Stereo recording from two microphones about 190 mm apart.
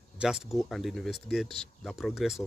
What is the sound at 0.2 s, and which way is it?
Speech, centre (ahead or behind).